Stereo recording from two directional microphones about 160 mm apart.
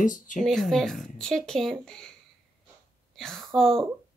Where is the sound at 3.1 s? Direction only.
Centre (ahead or behind).